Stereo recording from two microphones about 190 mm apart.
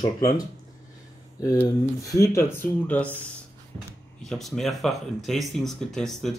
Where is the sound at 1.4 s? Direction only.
15° left (ahead or behind).